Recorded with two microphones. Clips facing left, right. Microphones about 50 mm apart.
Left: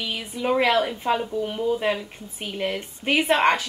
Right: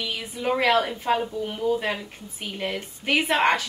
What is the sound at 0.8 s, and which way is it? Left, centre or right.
Speech, centre.